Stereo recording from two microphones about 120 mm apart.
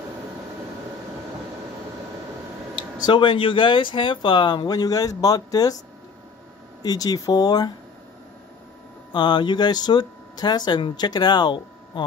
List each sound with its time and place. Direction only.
3.0 s speech: 40° left (ahead or behind)
6.8 s speech: 35° left (ahead or behind)
9.1 s speech: 40° left (ahead or behind)